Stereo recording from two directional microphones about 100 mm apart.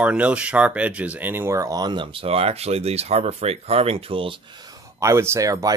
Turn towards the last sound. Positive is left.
turn(degrees=-35)  # may be behind; listen again after turning